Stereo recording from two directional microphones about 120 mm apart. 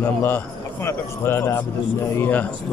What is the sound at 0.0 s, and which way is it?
A man's voice, 15° left (ahead or behind).